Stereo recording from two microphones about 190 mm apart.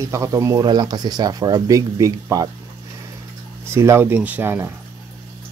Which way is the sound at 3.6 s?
15° right (ahead or behind).